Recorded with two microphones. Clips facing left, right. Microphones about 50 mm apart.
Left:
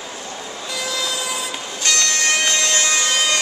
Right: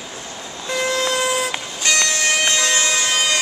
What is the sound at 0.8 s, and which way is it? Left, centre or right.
Vehicle, right.